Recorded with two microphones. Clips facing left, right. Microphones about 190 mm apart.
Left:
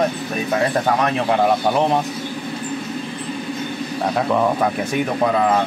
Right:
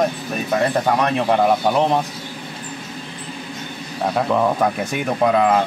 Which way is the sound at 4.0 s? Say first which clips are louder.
Even; centre (ahead or behind).